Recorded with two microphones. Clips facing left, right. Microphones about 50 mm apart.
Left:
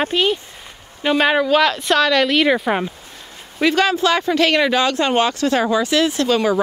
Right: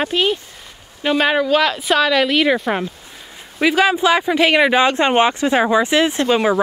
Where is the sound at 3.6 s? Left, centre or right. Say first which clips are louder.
Right 1 dB; centre.